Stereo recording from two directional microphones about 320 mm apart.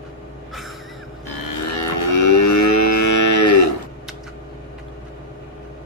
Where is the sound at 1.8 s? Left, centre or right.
Left.